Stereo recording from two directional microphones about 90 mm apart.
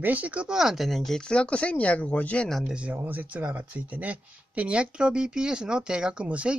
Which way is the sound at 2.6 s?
15° right (ahead or behind).